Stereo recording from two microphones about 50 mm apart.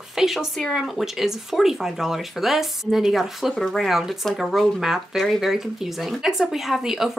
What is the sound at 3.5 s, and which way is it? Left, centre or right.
Speech, centre.